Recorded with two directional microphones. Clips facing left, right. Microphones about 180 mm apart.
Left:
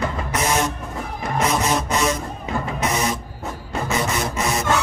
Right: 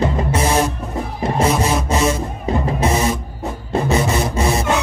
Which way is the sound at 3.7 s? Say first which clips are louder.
Right 6 dB; 30° right (ahead or behind).